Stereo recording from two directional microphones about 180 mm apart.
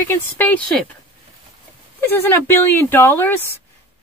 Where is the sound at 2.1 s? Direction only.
10° left (ahead or behind).